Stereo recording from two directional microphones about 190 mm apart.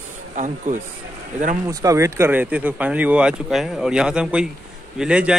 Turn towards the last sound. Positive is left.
turn(degrees=-5)  # may be behind; listen again after turning